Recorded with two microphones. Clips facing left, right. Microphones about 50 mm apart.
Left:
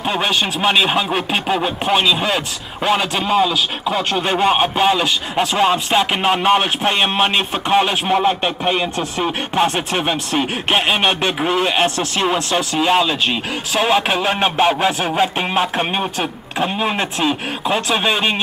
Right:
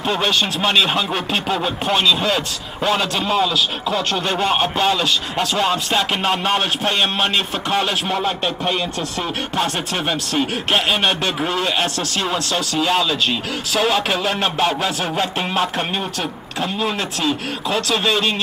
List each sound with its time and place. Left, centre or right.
0.0 s speech: centre